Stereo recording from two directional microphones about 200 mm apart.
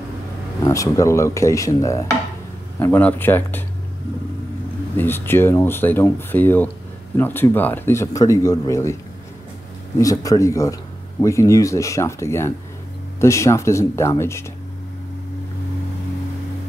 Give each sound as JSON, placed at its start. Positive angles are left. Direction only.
{"t": 0.7, "sound": "speech", "side_deg": 15}
{"t": 4.9, "sound": "speech", "side_deg": 10}
{"t": 9.9, "sound": "speech", "side_deg": 15}